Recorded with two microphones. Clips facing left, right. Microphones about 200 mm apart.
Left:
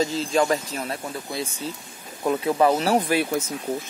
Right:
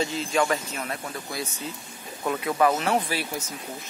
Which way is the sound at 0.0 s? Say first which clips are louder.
Left 3 dB; 35° left (ahead or behind).